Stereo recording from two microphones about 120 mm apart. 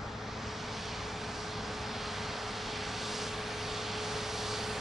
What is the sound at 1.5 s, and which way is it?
Vehicle, centre (ahead or behind).